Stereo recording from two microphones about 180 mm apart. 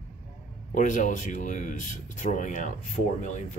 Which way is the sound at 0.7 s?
45° left (ahead or behind).